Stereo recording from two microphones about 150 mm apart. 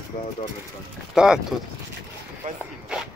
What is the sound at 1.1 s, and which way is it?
Speech, 5° right (ahead or behind).